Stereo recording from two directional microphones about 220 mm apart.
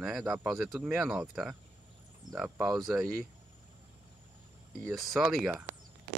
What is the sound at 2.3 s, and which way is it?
Speech, 15° right (ahead or behind).